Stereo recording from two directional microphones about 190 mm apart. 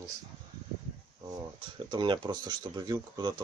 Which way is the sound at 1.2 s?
25° right (ahead or behind).